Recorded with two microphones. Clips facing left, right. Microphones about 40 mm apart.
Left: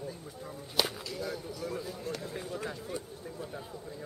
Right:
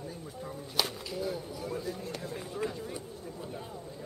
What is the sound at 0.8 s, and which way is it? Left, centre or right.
Speech, centre.